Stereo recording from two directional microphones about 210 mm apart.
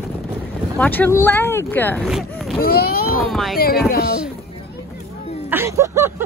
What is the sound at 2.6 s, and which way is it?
Speech, 45° left (ahead or behind).